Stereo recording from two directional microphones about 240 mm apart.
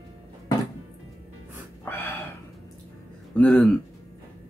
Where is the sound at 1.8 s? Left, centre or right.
Centre.